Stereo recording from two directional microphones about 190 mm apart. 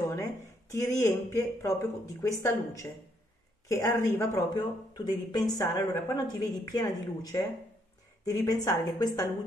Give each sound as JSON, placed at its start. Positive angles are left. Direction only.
{"t": 0.7, "sound": "speech", "side_deg": 15}